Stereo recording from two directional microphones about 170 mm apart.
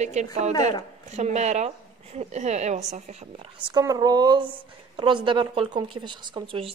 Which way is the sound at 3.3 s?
30° right (ahead or behind).